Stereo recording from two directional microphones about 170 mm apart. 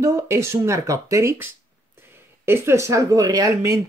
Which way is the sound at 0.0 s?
15° right (ahead or behind).